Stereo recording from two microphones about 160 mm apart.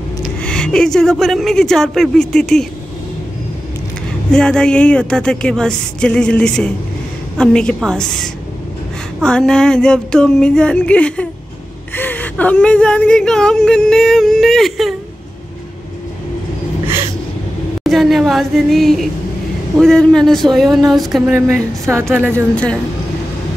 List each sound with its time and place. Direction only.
0.4 s speech: 5° left (ahead or behind)
4.3 s speech: 5° left (ahead or behind)
17.8 s speech: centre (ahead or behind)
21.3 s speech: 15° right (ahead or behind)